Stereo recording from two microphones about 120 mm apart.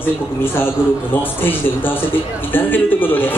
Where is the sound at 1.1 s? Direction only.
15° left (ahead or behind).